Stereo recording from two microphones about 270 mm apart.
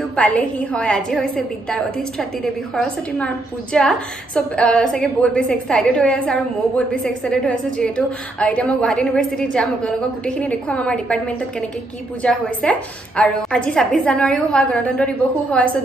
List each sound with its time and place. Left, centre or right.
0.1 s a woman's voice: centre